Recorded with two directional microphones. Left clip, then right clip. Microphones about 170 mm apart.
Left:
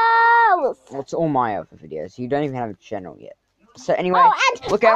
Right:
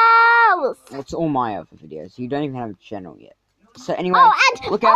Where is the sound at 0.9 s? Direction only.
Centre (ahead or behind).